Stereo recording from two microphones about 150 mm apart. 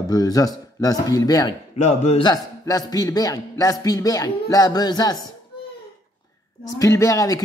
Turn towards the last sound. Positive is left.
turn(degrees=20)  # may be behind; listen again after turning